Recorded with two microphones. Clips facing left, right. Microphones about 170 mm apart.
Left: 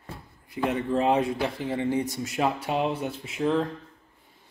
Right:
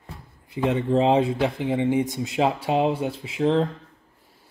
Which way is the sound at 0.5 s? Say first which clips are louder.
Right 4 dB; 20° right (ahead or behind).